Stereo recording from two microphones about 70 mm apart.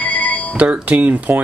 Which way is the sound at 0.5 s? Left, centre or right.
Centre.